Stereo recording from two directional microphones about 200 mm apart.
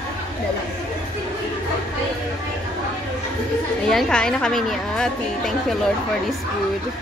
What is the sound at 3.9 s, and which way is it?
A woman's voice, 5° left (ahead or behind).